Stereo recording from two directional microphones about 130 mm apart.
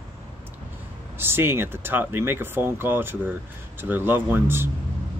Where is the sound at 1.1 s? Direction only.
15° right (ahead or behind).